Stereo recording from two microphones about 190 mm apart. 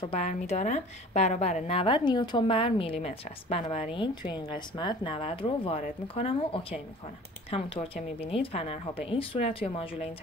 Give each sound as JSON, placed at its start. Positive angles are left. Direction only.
{"t": 0.0, "sound": "a woman's voice", "side_deg": 35}